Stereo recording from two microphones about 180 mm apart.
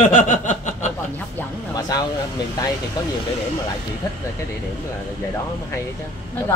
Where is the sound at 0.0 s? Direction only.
45° left (ahead or behind).